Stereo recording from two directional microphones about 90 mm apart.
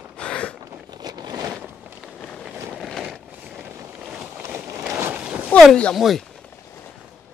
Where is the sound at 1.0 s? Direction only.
50° right (ahead or behind).